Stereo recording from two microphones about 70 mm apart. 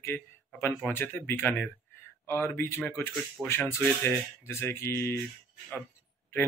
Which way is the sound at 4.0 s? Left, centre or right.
Left.